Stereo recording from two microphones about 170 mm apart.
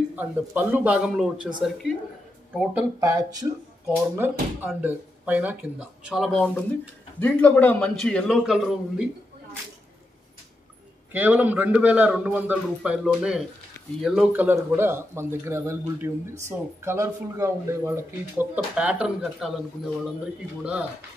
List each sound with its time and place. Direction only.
0.1 s a man's voice: 10° right (ahead or behind)
3.0 s a man's voice: 20° right (ahead or behind); by 9.0 s centre (ahead or behind)
11.1 s a man's voice: 10° right (ahead or behind)
14.3 s speech: 15° right (ahead or behind)